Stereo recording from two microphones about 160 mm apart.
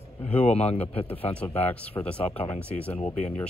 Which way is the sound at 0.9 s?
35° left (ahead or behind).